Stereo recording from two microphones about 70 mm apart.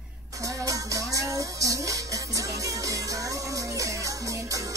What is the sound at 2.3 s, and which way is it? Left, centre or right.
Music, right.